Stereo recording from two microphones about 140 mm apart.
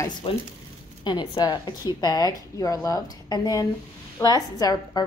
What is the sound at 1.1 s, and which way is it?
A woman's voice, 30° left (ahead or behind).